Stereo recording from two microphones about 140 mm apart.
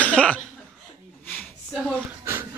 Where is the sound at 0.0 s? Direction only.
10° left (ahead or behind).